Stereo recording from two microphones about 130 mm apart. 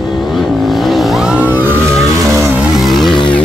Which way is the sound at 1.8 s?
5° left (ahead or behind).